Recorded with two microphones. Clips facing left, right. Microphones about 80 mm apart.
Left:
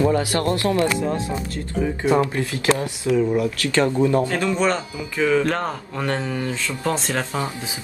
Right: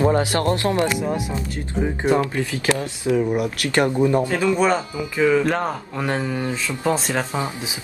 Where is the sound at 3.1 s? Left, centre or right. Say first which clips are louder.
Left 1 dB; right.